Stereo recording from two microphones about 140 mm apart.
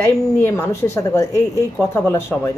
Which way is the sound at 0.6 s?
20° left (ahead or behind).